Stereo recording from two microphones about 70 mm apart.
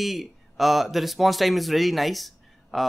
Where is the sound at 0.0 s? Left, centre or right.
Centre.